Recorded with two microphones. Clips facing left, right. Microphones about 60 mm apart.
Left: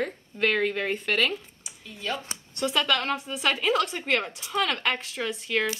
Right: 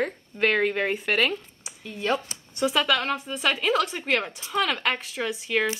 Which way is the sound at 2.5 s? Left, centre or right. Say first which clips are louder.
Right 2 dB; centre.